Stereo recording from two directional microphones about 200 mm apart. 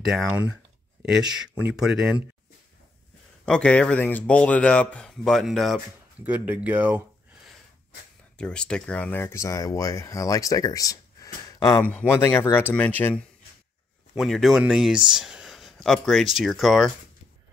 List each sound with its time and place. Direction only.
0.0 s speech: centre (ahead or behind)
3.4 s speech: 5° left (ahead or behind)
8.4 s speech: 5° left (ahead or behind)